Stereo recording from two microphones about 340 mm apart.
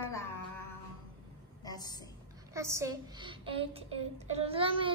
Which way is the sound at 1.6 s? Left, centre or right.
Centre.